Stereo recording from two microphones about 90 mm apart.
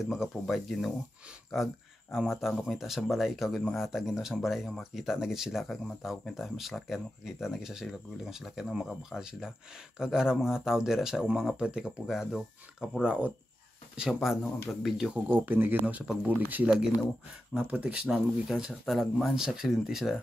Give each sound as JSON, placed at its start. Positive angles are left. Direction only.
{"t": 0.0, "sound": "speech", "side_deg": -5}
{"t": 15.4, "sound": "speech", "side_deg": -25}